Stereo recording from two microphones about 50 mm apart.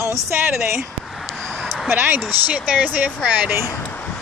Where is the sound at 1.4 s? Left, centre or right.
Left.